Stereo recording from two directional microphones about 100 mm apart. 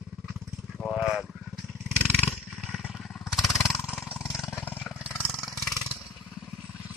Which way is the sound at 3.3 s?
Centre (ahead or behind).